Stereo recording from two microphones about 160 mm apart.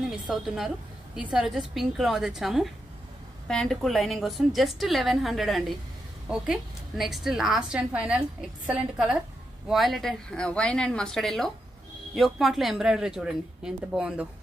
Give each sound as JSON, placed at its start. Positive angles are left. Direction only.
{"t": 0.3, "sound": "a woman's voice", "side_deg": 0}